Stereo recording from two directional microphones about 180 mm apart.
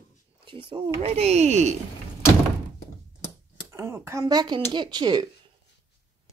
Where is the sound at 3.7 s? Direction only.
15° right (ahead or behind).